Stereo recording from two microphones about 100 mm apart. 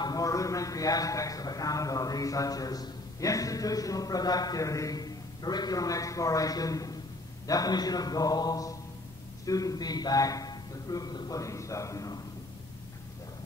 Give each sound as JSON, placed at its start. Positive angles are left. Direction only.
{"t": 0.0, "sound": "a man's voice", "side_deg": 35}